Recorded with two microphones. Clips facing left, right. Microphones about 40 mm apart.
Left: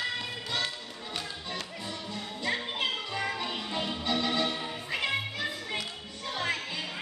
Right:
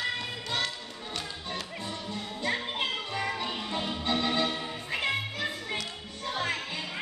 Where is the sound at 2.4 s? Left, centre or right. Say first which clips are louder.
Even; centre.